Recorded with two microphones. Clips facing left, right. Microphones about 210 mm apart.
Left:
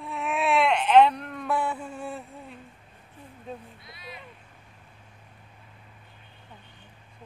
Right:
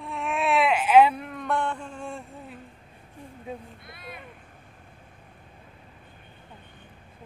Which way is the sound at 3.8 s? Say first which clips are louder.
Right 2 dB; 55° right (ahead or behind).